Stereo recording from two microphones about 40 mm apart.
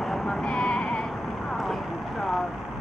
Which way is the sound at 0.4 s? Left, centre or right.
Left.